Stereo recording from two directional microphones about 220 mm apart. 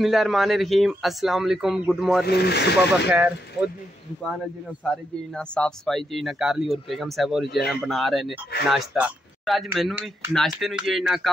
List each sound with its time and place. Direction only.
0.0 s speech: centre (ahead or behind)
2.2 s speech: 45° left (ahead or behind)
4.8 s speech: 5° left (ahead or behind)